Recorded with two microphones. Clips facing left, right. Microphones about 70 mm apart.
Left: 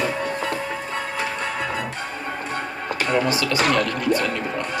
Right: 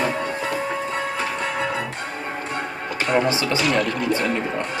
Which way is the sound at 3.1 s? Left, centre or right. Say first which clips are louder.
Right 2 dB; right.